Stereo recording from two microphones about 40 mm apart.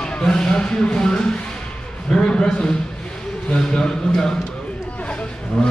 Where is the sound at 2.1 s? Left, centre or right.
Centre.